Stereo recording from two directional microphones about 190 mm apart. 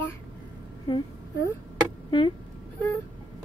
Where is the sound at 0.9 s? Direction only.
25° left (ahead or behind).